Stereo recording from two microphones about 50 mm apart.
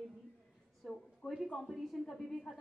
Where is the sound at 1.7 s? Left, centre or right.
Centre.